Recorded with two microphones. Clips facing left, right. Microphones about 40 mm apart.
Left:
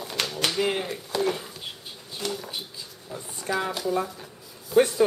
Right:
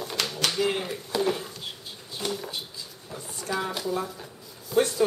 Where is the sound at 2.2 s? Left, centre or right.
Centre.